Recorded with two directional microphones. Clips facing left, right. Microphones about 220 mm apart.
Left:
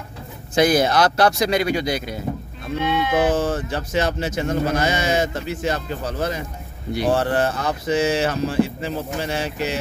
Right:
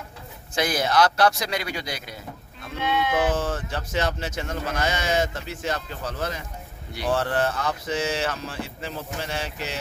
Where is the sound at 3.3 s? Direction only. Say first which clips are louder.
Left 5 dB; 10° left (ahead or behind).